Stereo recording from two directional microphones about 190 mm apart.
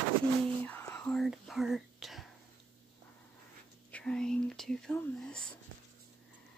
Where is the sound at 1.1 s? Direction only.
Centre (ahead or behind).